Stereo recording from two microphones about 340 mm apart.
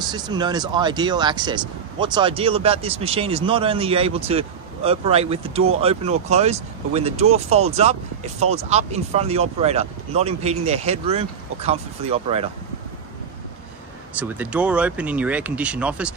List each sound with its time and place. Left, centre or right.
0.1 s speech: centre
14.1 s speech: centre